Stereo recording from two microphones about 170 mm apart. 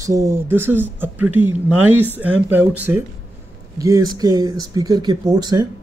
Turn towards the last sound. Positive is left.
turn(degrees=-20)  # may be behind; listen again after turning